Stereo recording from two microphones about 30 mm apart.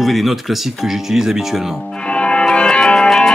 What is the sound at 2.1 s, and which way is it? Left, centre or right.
Music, left.